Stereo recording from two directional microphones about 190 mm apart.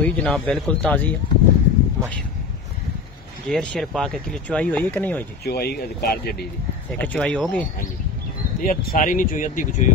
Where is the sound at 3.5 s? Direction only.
5° left (ahead or behind).